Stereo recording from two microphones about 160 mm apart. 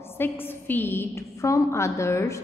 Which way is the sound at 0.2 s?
15° left (ahead or behind).